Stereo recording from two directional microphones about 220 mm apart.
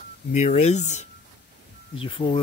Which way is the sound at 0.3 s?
30° left (ahead or behind).